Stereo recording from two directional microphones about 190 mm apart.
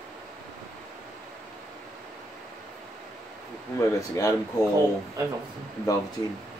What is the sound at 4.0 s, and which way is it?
Speech, 15° left (ahead or behind).